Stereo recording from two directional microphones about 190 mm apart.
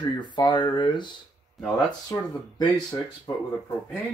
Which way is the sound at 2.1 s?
20° left (ahead or behind).